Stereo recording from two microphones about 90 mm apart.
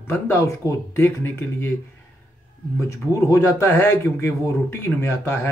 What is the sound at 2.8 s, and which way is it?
Speech, 35° left (ahead or behind).